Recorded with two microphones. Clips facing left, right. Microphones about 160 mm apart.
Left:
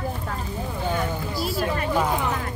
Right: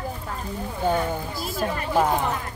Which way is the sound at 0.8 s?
50° right (ahead or behind).